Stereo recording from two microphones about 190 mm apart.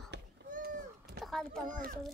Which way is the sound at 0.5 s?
55° right (ahead or behind).